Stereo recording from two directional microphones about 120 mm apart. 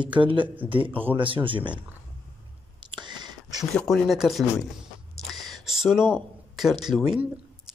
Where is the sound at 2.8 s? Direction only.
40° right (ahead or behind).